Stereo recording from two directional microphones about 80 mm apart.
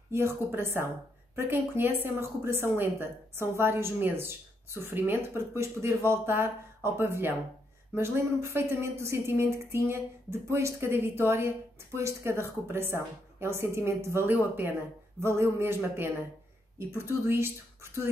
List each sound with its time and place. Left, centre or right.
0.1 s a woman's voice: right